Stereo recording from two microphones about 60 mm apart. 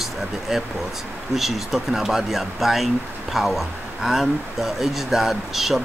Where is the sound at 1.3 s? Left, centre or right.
Centre.